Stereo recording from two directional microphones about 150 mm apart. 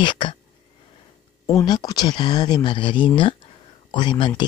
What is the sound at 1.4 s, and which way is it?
Speech, 25° left (ahead or behind).